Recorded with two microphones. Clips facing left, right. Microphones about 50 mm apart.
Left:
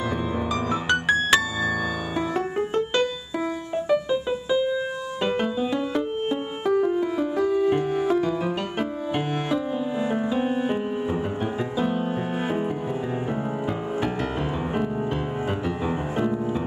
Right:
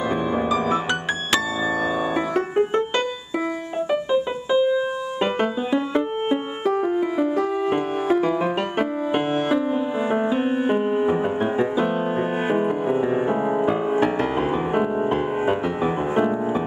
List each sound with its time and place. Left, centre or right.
0.7 s music: centre
2.1 s music: right
3.9 s music: right